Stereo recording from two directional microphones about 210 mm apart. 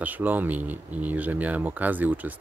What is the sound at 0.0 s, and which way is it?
Speech, 10° right (ahead or behind).